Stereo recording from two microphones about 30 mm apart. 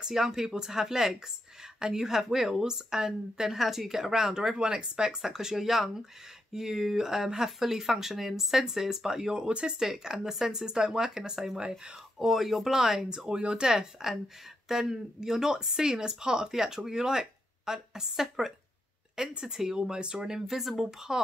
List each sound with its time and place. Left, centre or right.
0.0 s speech: centre
2.2 s speech: centre
3.5 s speech: centre
4.6 s speech: right
12.2 s speech: centre
13.3 s speech: right
13.6 s speech: centre
19.7 s speech: right
20.5 s speech: centre